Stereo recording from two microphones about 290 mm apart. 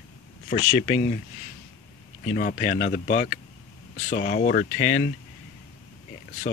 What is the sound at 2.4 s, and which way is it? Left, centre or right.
Speech, left.